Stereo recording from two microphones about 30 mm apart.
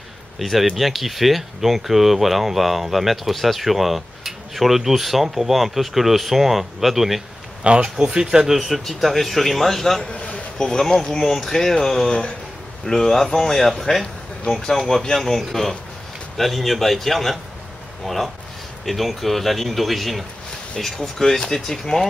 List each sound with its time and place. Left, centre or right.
0.4 s speech: centre
7.6 s speech: right
8.1 s speech: right
8.5 s speech: centre
10.1 s a sound: left
10.6 s speech: centre
11.1 s speech: centre
21.2 s speech: left